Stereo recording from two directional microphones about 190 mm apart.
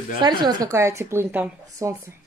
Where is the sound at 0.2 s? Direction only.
25° right (ahead or behind).